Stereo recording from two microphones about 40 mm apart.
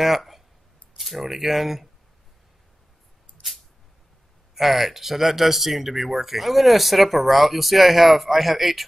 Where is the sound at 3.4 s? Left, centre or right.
Left.